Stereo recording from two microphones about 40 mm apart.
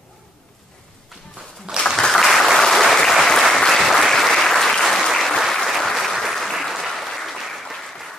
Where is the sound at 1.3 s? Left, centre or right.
Right.